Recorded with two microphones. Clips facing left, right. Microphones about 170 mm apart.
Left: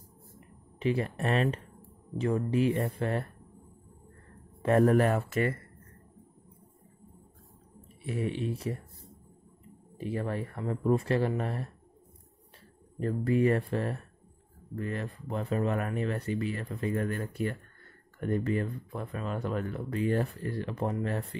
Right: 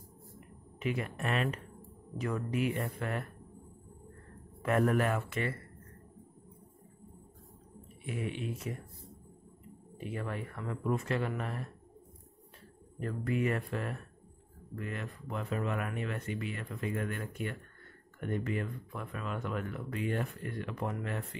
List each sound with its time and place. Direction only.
0.7 s speech: 30° left (ahead or behind)
4.6 s speech: 35° left (ahead or behind)
8.0 s speech: 35° left (ahead or behind)
9.9 s speech: 35° left (ahead or behind)
13.0 s speech: 35° left (ahead or behind)